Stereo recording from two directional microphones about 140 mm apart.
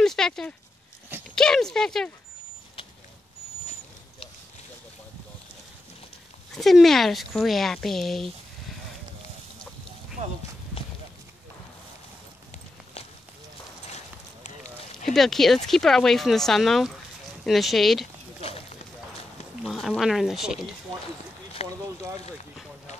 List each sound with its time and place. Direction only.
0.0 s speech: 5° left (ahead or behind)
6.5 s speech: centre (ahead or behind)
15.0 s speech: centre (ahead or behind)
19.6 s speech: centre (ahead or behind)
21.6 s a sound: 50° left (ahead or behind)